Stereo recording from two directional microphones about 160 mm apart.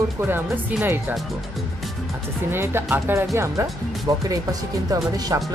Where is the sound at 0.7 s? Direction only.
5° right (ahead or behind).